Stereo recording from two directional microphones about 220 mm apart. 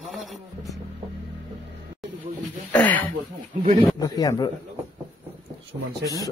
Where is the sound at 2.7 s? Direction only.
5° left (ahead or behind).